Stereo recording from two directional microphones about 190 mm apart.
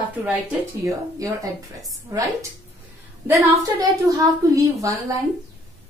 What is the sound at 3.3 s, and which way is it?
A woman's voice, 15° right (ahead or behind).